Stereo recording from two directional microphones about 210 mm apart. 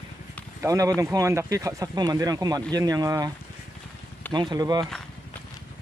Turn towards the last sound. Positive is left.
turn(degrees=-20)  # may be behind; listen again after turning